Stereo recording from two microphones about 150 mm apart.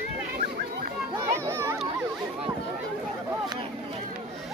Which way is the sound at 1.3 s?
15° right (ahead or behind).